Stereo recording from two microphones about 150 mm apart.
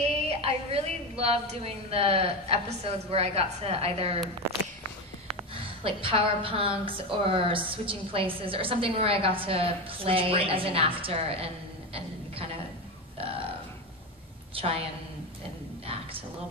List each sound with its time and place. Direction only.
0.0 s a woman's voice: 45° right (ahead or behind)
5.5 s a woman's voice: 35° right (ahead or behind)
14.5 s a woman's voice: 40° right (ahead or behind)